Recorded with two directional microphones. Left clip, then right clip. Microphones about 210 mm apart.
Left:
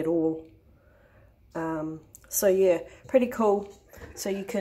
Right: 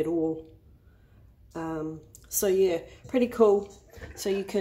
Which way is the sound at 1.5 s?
5° left (ahead or behind).